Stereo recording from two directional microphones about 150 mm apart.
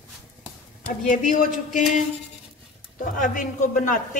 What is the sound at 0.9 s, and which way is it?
Speech, 60° left (ahead or behind).